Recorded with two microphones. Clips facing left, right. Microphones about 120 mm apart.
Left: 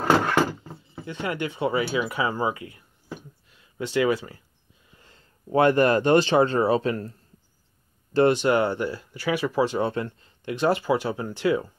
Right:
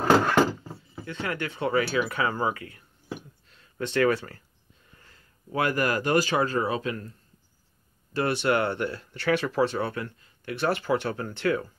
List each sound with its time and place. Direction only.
1.0 s speech: 20° left (ahead or behind)
3.4 s a sound: 10° left (ahead or behind)
4.9 s speech: 20° left (ahead or behind)
8.4 s speech: 15° left (ahead or behind)
9.8 s speech: 25° left (ahead or behind)
10.5 s speech: 15° left (ahead or behind)